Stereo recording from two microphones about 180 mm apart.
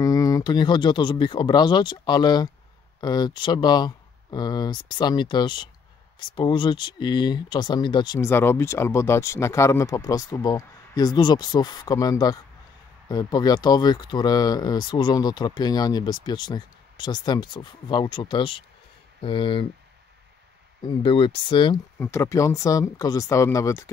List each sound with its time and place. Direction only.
0.0 s speech: 20° left (ahead or behind)
20.8 s speech: 30° left (ahead or behind)
22.0 s speech: 15° left (ahead or behind)